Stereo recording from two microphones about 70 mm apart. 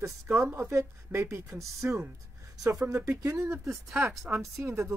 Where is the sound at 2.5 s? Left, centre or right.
Right.